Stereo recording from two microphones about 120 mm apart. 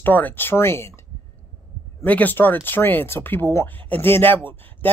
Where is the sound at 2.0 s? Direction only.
15° left (ahead or behind).